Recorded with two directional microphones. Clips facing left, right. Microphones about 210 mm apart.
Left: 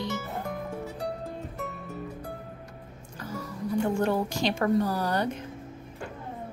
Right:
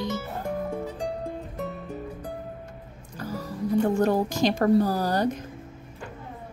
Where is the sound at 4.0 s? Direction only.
40° right (ahead or behind).